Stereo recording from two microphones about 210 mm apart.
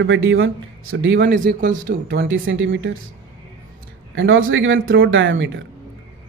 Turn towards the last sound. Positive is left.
turn(degrees=-60)  # may be behind; listen again after turning